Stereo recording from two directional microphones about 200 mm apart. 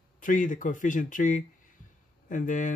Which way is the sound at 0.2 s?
40° left (ahead or behind).